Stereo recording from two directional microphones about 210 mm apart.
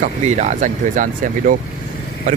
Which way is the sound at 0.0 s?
35° right (ahead or behind).